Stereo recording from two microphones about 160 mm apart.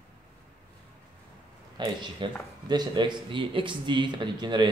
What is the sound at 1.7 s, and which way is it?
Speech, 30° right (ahead or behind).